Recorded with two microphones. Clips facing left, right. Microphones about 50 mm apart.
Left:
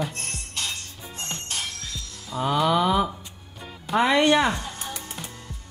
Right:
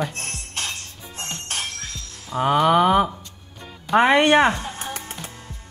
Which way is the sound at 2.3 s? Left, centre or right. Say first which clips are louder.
Right 5 dB; right.